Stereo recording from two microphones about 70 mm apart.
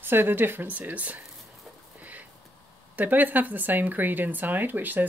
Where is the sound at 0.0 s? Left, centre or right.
Right.